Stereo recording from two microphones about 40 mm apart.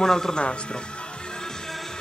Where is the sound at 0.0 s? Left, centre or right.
Centre.